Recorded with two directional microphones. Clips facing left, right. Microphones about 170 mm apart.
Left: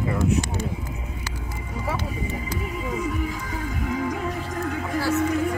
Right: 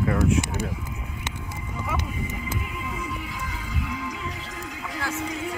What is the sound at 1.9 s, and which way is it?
Music, 35° left (ahead or behind).